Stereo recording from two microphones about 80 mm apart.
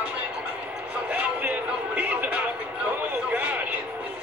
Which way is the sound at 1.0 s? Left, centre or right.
Centre.